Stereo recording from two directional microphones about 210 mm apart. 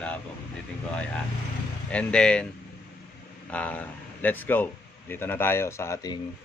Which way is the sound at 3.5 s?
5° left (ahead or behind).